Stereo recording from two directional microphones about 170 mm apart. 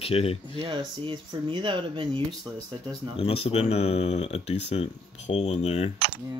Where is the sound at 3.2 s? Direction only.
35° left (ahead or behind).